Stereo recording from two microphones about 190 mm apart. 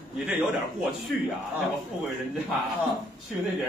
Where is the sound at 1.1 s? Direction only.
Centre (ahead or behind).